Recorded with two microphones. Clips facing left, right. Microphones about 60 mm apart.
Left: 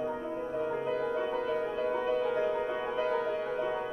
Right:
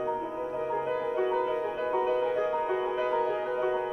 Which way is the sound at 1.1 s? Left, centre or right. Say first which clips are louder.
Right 3 dB; centre.